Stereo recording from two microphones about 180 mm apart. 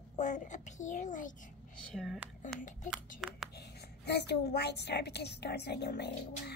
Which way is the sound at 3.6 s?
70° left (ahead or behind).